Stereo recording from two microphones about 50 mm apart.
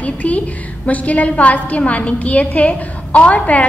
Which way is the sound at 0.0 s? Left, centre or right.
Left.